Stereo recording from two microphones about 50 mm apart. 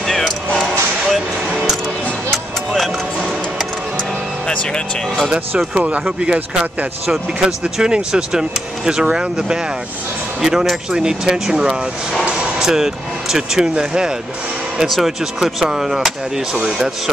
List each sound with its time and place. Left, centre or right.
0.0 s music: centre
2.3 s music: centre
4.5 s speech: centre
5.8 s speech: right
14.9 s speech: centre